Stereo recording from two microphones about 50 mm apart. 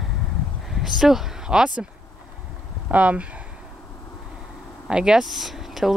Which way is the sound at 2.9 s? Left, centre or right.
Right.